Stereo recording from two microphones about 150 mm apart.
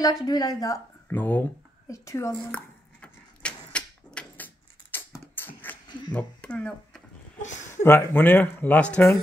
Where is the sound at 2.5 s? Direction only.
10° left (ahead or behind).